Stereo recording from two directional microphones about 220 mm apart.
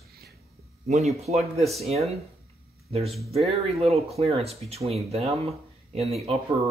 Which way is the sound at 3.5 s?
30° right (ahead or behind).